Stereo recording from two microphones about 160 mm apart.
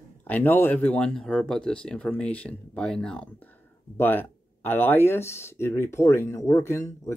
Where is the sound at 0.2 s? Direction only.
15° left (ahead or behind).